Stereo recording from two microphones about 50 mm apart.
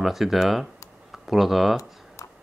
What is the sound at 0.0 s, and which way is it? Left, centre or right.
Speech, centre.